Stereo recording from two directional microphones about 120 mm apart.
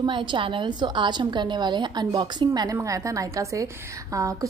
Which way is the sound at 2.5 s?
30° right (ahead or behind).